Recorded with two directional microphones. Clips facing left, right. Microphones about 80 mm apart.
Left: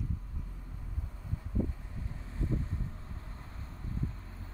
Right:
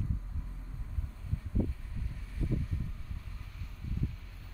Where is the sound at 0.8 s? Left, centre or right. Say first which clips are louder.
Even; centre.